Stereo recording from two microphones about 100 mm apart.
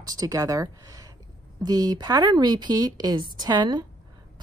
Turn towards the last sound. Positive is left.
turn(degrees=-45)  # may be behind; listen again after turning